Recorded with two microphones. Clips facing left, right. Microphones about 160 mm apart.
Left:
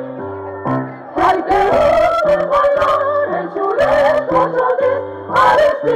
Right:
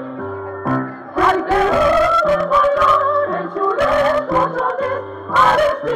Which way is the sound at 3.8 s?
50° left (ahead or behind).